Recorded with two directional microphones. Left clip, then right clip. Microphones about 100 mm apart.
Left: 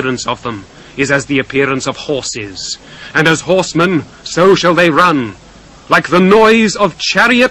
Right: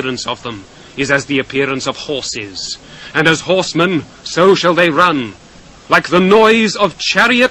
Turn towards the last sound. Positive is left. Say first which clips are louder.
# left 1 dB
turn(degrees=-25)  # may be behind; listen again after turning